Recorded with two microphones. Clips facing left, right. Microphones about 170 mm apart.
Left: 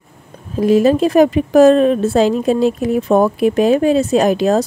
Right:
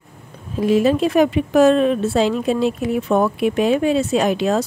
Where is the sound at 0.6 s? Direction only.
40° left (ahead or behind).